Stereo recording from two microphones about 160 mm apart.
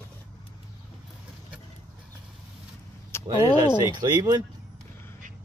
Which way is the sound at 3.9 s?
25° right (ahead or behind).